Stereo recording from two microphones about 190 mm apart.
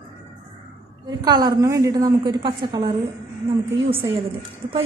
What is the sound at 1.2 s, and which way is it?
A woman's voice, 20° right (ahead or behind).